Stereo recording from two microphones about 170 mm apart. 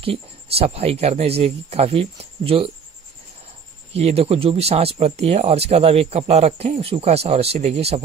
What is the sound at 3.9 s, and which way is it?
Speech, 35° right (ahead or behind).